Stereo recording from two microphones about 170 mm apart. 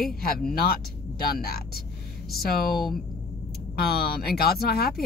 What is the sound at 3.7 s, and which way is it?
Speech, 70° left (ahead or behind).